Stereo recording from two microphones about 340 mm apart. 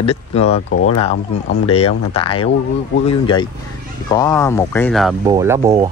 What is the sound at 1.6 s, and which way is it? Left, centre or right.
A man's voice, centre.